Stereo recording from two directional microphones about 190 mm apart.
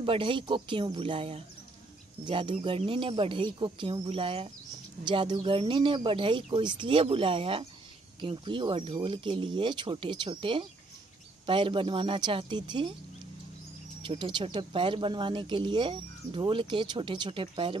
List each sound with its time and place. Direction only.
0.0 s speech: 25° right (ahead or behind)
14.0 s speech: 25° right (ahead or behind)